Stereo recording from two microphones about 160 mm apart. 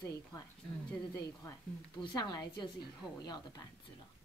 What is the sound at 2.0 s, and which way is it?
Speech, 30° left (ahead or behind).